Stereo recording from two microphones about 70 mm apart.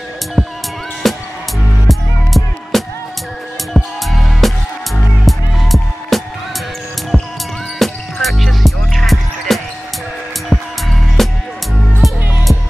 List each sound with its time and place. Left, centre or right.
0.4 s music: centre